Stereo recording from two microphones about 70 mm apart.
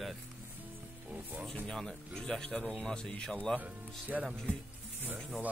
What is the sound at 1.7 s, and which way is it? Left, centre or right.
Speech, centre.